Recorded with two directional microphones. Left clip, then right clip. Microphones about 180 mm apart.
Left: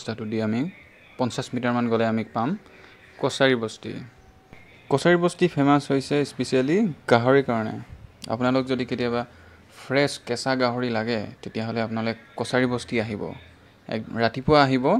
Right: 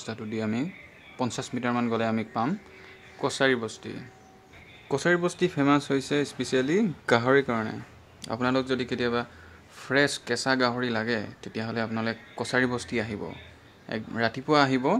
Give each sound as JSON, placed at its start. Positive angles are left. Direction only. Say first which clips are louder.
{"t": 0.0, "sound": "speech", "louder": "left 5 dB", "side_deg": 20}